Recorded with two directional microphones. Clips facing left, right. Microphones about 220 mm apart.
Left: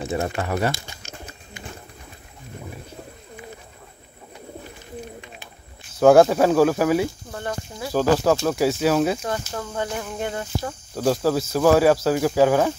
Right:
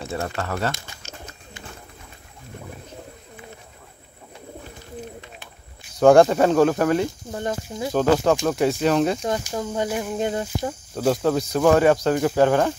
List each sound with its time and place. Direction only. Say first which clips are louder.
0.0 s speech: left 3 dB; 15° left (ahead or behind)
5.9 s speech: even; 5° left (ahead or behind)
7.2 s speech: right 3 dB; 20° right (ahead or behind)
7.9 s speech: even; 5° left (ahead or behind)
9.2 s speech: right 3 dB; 15° right (ahead or behind)
11.0 s speech: even; centre (ahead or behind)